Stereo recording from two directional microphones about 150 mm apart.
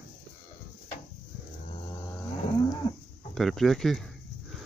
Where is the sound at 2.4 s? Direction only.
25° left (ahead or behind).